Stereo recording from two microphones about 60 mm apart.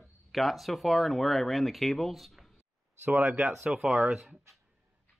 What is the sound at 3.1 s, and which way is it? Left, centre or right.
Speech, right.